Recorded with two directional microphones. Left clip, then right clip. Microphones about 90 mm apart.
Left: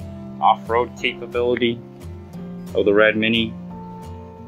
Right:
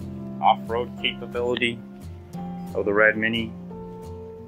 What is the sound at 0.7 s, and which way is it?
Speech, 35° left (ahead or behind).